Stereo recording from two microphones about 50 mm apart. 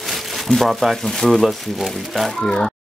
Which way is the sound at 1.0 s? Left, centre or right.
Centre.